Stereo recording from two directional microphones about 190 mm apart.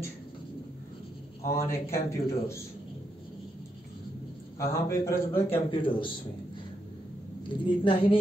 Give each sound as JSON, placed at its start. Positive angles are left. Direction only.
{"t": 1.4, "sound": "a man's voice", "side_deg": 15}
{"t": 4.6, "sound": "a man's voice", "side_deg": 15}
{"t": 5.5, "sound": "a woman's voice", "side_deg": 25}
{"t": 7.4, "sound": "a woman's voice", "side_deg": 25}